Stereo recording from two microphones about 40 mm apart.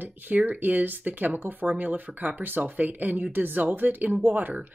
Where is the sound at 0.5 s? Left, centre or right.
Right.